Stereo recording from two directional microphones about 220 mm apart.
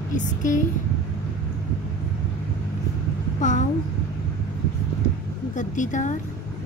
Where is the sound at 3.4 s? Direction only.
35° left (ahead or behind).